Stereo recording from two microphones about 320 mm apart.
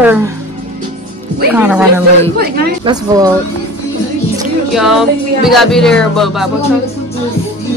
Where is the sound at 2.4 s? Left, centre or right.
Right.